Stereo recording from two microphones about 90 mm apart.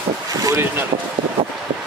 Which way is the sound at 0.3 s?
40° right (ahead or behind).